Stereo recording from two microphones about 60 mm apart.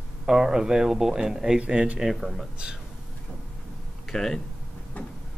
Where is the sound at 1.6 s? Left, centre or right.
Centre.